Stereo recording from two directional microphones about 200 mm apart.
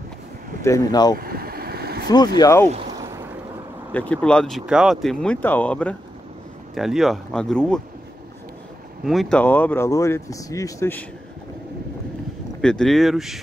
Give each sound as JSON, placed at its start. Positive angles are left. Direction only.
{"t": 0.6, "sound": "speech", "side_deg": 15}
{"t": 1.1, "sound": "vehicle", "side_deg": -50}
{"t": 2.0, "sound": "speech", "side_deg": 20}
{"t": 3.9, "sound": "speech", "side_deg": 5}
{"t": 9.0, "sound": "speech", "side_deg": 0}
{"t": 12.6, "sound": "speech", "side_deg": 5}